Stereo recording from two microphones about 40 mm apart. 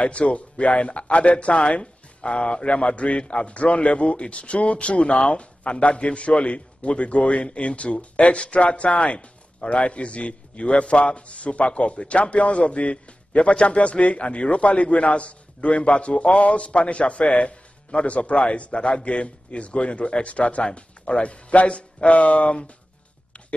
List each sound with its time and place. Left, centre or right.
0.0 s speech: left